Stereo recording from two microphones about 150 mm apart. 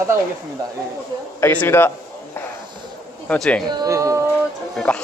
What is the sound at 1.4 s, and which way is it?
Speech, 15° left (ahead or behind).